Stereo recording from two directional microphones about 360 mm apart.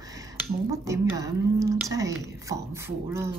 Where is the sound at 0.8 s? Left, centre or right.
Centre.